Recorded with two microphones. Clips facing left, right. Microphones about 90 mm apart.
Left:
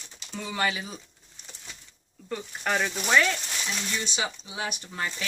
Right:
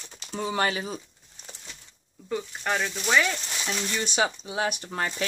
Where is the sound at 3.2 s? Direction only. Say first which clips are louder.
Left 1 dB; 10° right (ahead or behind).